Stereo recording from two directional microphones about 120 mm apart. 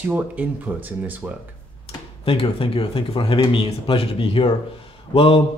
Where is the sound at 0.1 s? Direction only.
15° right (ahead or behind).